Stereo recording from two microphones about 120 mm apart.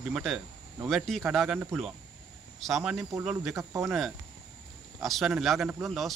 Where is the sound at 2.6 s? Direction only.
5° right (ahead or behind).